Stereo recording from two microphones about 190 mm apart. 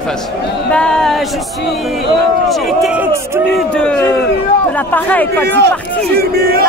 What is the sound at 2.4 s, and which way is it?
A man's voice, centre (ahead or behind).